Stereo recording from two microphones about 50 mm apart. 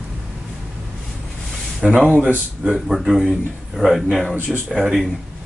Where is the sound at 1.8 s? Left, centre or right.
Centre.